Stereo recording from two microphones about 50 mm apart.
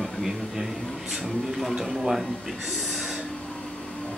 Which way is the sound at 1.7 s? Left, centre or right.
Centre.